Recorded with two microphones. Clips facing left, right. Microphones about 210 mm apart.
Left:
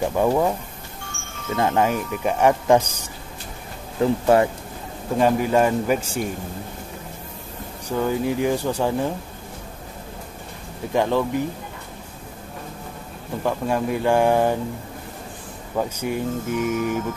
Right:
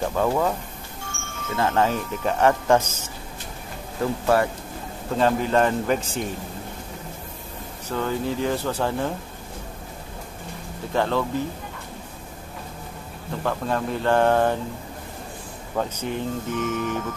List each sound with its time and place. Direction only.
0.0 s speech: 15° left (ahead or behind)
1.6 s speech: 15° left (ahead or behind)
4.3 s speech: 25° left (ahead or behind)
5.1 s speech: 10° left (ahead or behind)
7.9 s speech: 15° left (ahead or behind)
10.9 s speech: 15° left (ahead or behind)
13.4 s speech: 10° left (ahead or behind)
15.7 s speech: 10° left (ahead or behind)